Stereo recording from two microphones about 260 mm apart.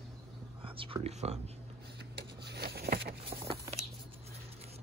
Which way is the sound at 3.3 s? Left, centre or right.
Right.